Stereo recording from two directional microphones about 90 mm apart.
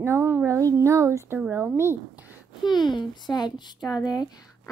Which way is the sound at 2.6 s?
55° left (ahead or behind).